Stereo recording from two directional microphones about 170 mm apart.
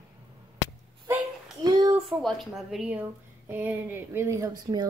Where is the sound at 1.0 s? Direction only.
20° right (ahead or behind).